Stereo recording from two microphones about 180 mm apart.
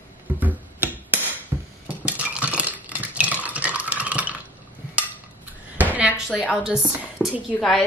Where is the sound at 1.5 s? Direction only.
15° right (ahead or behind).